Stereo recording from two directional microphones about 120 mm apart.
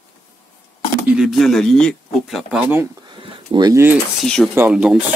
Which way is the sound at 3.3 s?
40° right (ahead or behind).